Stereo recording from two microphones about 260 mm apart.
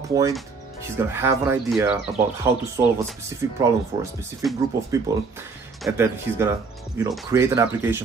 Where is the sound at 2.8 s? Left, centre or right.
Right.